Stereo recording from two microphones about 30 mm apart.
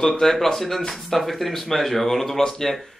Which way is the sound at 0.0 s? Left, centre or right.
Centre.